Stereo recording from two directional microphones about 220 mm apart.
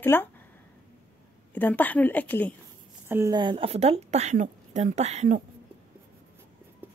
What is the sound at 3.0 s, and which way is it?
A woman's voice, 10° right (ahead or behind).